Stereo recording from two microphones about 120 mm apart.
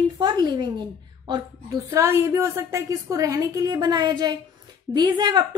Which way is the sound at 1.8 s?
25° right (ahead or behind).